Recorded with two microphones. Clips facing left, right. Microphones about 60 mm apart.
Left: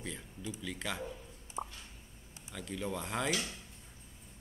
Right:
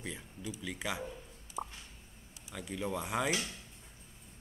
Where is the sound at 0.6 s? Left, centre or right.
Centre.